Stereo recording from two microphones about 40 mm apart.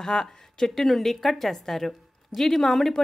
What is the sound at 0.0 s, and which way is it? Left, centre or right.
Speech, centre.